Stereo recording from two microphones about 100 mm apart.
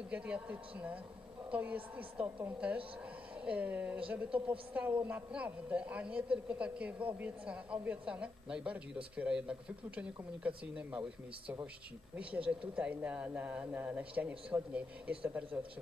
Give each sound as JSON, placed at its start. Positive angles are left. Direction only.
{"t": 0.1, "sound": "a man's voice", "side_deg": -15}
{"t": 12.2, "sound": "a man's voice", "side_deg": -10}